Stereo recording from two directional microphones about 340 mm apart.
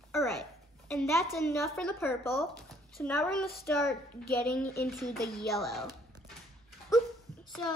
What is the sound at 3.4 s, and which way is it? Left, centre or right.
A woman's voice, left.